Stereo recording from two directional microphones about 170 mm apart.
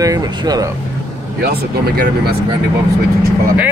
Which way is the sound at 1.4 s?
70° right (ahead or behind).